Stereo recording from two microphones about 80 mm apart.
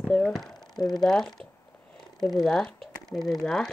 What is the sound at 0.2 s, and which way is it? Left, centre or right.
Speech, centre.